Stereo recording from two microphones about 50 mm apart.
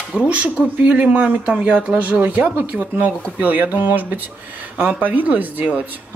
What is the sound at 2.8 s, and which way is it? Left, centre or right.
Speech, right.